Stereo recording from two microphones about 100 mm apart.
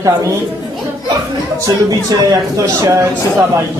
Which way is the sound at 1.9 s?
35° right (ahead or behind).